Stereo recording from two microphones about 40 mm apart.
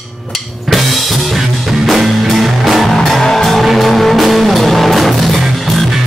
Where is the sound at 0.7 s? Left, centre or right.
Centre.